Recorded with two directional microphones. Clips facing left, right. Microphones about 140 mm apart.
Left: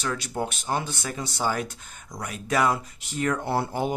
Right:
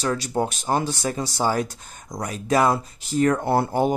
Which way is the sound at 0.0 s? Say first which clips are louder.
Right 5 dB; 35° right (ahead or behind).